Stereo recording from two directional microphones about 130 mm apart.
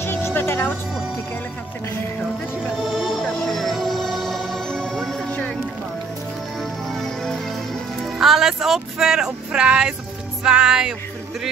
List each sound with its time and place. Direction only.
0.0 s music: 20° left (ahead or behind)
2.8 s music: centre (ahead or behind)
6.6 s music: centre (ahead or behind)
8.2 s speech: 5° right (ahead or behind)
10.4 s music: 5° right (ahead or behind)